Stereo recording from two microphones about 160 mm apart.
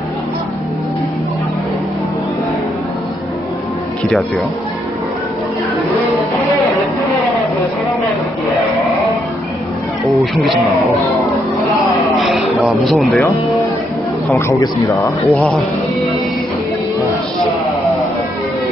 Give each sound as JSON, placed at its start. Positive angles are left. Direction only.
{"t": 10.0, "sound": "speech", "side_deg": 0}
{"t": 12.2, "sound": "speech", "side_deg": 0}
{"t": 14.6, "sound": "speech", "side_deg": 15}